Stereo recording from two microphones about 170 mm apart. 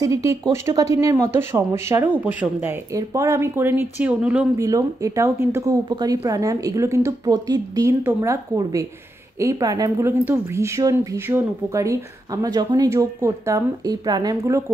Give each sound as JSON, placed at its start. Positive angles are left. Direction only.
{"t": 0.0, "sound": "speech", "side_deg": -20}
{"t": 4.6, "sound": "speech", "side_deg": -20}